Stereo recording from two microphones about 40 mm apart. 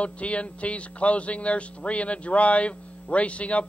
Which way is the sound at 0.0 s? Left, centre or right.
Left.